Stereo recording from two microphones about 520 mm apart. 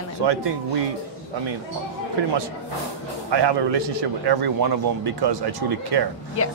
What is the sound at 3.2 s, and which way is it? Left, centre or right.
A man's voice, right.